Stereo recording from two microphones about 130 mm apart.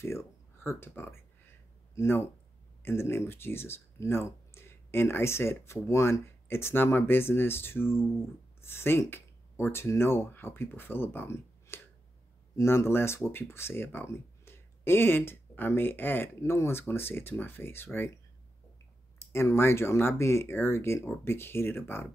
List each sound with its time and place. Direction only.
0.7 s speech: 15° left (ahead or behind)
19.1 s speech: 20° left (ahead or behind)